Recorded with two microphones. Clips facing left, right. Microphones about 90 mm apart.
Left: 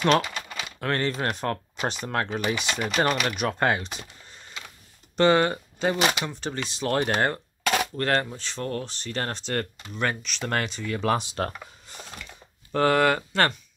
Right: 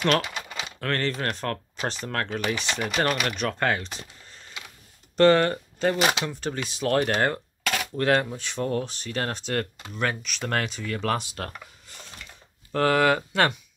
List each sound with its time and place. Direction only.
0.2 s typing: 15° right (ahead or behind)
0.7 s speech: 10° left (ahead or behind)
7.6 s a sound: 25° left (ahead or behind)
7.9 s speech: 5° right (ahead or behind)
11.0 s speech: 15° left (ahead or behind)
11.2 s speech: 25° left (ahead or behind)
11.9 s a sound: 25° left (ahead or behind)
12.7 s speech: centre (ahead or behind)